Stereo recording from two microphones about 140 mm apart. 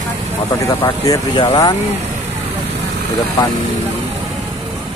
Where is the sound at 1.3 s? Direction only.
40° left (ahead or behind).